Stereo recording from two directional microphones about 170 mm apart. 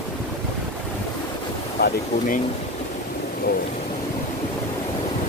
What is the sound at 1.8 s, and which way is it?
Speech, 55° left (ahead or behind).